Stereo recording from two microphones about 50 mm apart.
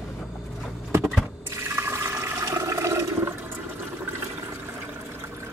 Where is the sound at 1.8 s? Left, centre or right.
Right.